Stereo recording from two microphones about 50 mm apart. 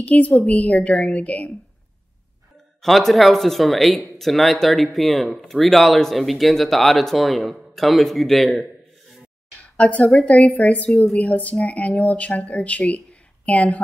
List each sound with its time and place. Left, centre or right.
0.0 s speech: left
2.8 s speech: centre
9.8 s speech: left